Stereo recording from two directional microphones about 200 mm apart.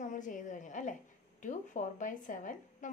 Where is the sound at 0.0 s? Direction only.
40° left (ahead or behind).